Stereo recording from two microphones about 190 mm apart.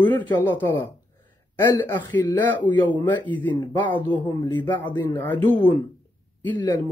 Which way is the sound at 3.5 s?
25° left (ahead or behind).